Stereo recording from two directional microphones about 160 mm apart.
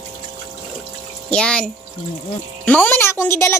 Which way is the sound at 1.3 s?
5° left (ahead or behind).